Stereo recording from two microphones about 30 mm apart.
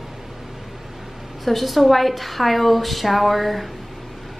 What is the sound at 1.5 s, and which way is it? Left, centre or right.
A woman's voice, centre.